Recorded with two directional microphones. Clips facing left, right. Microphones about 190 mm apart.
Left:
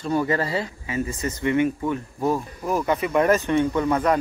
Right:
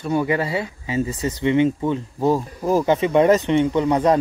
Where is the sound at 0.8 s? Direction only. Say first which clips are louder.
Right 4 dB; 20° right (ahead or behind).